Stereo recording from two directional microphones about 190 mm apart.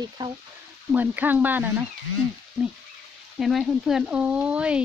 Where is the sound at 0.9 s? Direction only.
10° right (ahead or behind).